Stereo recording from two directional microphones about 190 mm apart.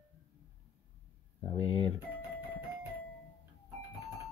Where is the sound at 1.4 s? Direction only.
30° left (ahead or behind).